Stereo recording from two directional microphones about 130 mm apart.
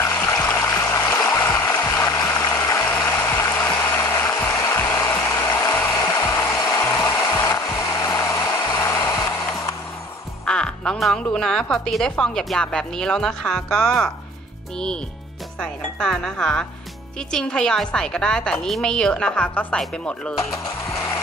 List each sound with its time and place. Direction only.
0.0 s music: 20° left (ahead or behind)
10.4 s speech: 5° left (ahead or behind)
15.6 s speech: 5° left (ahead or behind)
20.3 s a sound: 25° left (ahead or behind)